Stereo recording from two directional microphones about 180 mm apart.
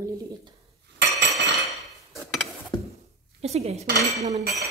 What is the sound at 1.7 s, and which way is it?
Dishes, centre (ahead or behind).